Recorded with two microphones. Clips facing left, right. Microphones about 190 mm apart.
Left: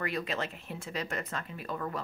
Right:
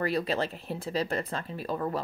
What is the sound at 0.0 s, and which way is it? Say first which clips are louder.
A woman's voice: right 6 dB; 35° right (ahead or behind).